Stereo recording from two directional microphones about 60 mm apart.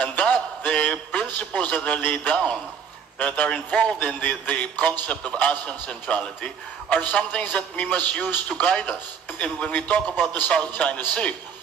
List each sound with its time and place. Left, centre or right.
0.0 s a sound: left
2.3 s a man's voice: centre
3.2 s a man's voice: left